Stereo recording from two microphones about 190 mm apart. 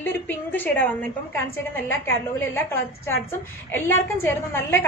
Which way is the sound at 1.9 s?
10° left (ahead or behind).